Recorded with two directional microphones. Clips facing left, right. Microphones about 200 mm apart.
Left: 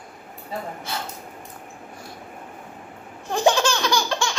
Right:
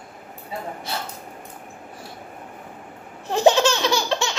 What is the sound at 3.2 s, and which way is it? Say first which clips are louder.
Laughter: right 3 dB; 25° right (ahead or behind).